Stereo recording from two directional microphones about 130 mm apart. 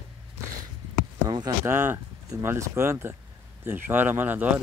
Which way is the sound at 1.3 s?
35° right (ahead or behind).